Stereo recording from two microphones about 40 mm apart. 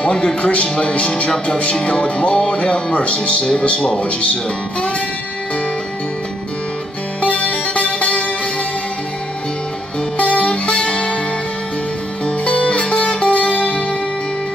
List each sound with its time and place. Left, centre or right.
0.1 s speech: centre
0.4 s speech: left
7.2 s music: left
10.1 s music: left
10.5 s music: left
12.3 s music: left